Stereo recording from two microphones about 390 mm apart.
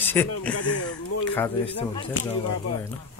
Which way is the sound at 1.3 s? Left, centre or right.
Centre.